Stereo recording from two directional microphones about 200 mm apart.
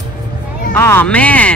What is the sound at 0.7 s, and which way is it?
Speech, 10° left (ahead or behind).